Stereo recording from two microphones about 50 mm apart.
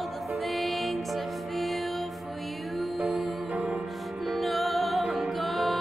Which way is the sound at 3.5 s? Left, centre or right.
Right.